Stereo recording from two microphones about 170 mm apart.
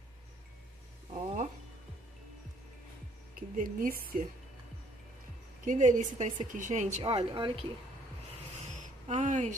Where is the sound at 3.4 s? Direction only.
55° right (ahead or behind).